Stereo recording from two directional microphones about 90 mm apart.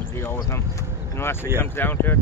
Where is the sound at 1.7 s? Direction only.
25° left (ahead or behind).